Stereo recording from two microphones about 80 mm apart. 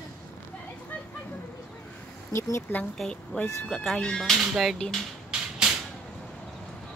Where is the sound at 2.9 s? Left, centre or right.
Centre.